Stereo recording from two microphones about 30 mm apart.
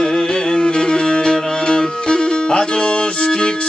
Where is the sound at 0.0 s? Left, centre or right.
Left.